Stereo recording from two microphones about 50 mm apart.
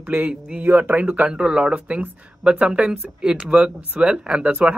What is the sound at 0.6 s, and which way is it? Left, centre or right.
Speech, right.